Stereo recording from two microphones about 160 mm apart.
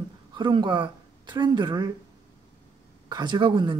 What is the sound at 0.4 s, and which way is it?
Speech, 30° right (ahead or behind).